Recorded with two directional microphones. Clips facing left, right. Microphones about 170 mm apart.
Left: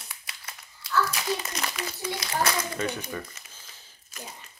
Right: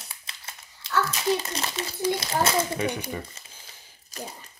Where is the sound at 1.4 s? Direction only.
30° right (ahead or behind).